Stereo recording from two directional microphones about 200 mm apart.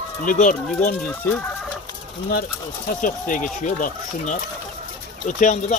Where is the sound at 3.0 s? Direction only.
40° left (ahead or behind).